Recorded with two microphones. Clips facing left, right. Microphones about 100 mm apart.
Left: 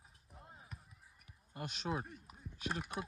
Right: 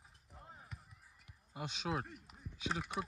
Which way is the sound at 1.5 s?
15° right (ahead or behind).